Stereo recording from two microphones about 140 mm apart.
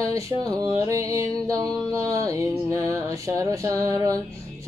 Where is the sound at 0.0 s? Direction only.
25° right (ahead or behind).